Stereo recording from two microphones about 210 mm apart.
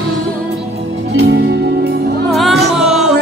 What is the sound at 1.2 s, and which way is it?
Music, 55° right (ahead or behind).